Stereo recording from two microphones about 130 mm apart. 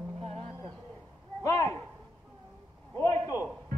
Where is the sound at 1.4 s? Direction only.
25° left (ahead or behind).